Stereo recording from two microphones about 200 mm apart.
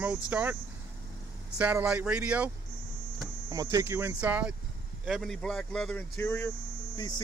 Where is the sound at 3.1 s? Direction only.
20° right (ahead or behind); by 6.5 s 10° left (ahead or behind).